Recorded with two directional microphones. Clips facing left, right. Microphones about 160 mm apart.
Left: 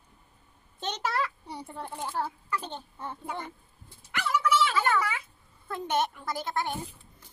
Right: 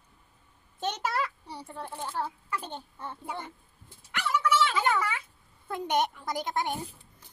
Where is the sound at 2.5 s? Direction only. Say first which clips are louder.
Left 2 dB; 10° right (ahead or behind).